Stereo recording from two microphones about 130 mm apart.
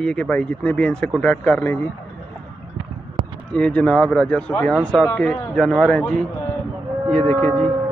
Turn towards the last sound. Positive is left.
turn(degrees=15)  # may be behind; listen again after turning